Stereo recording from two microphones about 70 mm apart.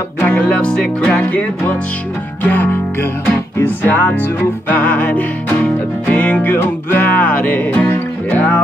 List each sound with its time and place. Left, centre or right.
0.2 s music: left